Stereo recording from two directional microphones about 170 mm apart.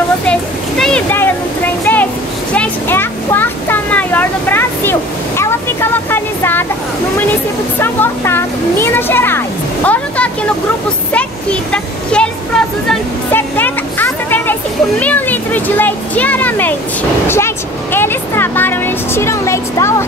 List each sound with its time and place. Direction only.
0.3 s a sound: 5° left (ahead or behind)
7.8 s speech: 15° left (ahead or behind)
11.7 s speech: 5° left (ahead or behind)
13.3 s children playing: 10° left (ahead or behind)
17.9 s speech: 15° left (ahead or behind)